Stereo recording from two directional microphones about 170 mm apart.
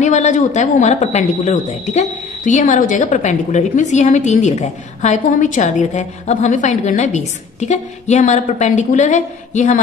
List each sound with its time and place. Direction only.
0.0 s speech: 45° left (ahead or behind)